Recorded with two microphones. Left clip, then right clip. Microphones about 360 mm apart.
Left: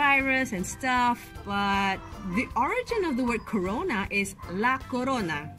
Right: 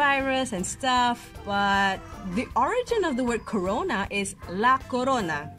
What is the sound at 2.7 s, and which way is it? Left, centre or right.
Speech, right.